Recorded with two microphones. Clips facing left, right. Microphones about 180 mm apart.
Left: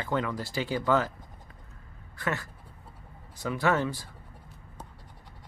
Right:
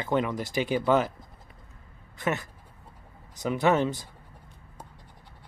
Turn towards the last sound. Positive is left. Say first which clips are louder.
# right 3 dB
turn(degrees=-20)  # may be behind; listen again after turning